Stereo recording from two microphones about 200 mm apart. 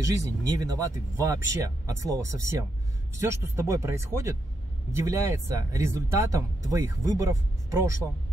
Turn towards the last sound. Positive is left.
turn(degrees=-15)  # may be behind; listen again after turning